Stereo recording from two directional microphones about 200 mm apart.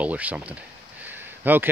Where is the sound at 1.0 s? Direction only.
10° right (ahead or behind).